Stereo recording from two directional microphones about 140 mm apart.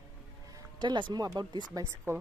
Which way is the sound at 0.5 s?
30° right (ahead or behind).